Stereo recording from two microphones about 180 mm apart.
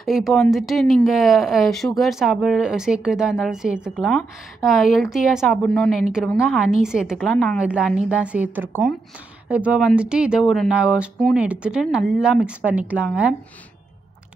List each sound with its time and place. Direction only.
0.0 s a woman's voice: centre (ahead or behind)